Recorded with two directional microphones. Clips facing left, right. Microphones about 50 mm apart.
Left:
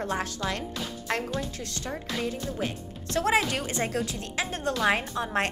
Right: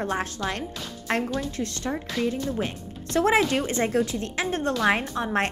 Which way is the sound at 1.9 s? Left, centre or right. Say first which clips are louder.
Right 1 dB; centre.